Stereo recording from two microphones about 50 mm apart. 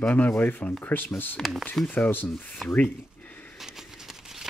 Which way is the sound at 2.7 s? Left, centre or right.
Left.